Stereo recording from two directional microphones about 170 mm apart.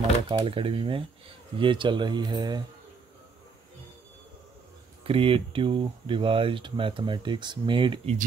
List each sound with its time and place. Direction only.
0.3 s speech: 30° right (ahead or behind)
5.0 s speech: 35° right (ahead or behind)